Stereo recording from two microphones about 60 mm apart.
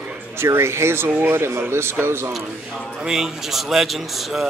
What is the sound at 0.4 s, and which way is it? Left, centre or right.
Speech, right.